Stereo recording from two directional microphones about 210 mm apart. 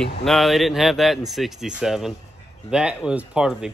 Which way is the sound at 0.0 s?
Centre (ahead or behind).